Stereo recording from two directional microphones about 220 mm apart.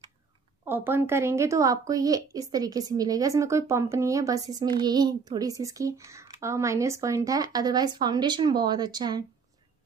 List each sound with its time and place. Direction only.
0.7 s a woman's voice: 10° right (ahead or behind)